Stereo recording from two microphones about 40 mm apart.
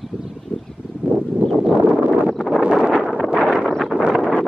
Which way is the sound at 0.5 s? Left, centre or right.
Left.